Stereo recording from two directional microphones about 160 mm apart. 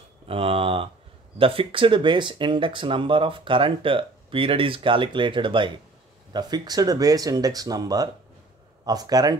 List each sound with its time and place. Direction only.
0.3 s speech: 35° right (ahead or behind)